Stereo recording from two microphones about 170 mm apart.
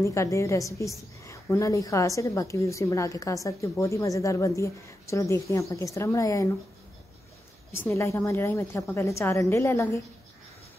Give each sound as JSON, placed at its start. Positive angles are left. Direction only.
{"t": 0.0, "sound": "a woman's voice", "side_deg": 15}
{"t": 7.7, "sound": "a woman's voice", "side_deg": 15}